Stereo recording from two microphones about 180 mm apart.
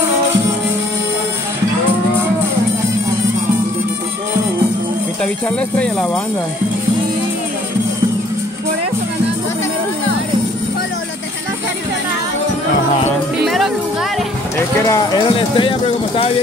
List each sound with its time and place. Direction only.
5.2 s speech: 5° left (ahead or behind)
14.9 s speech: 20° left (ahead or behind)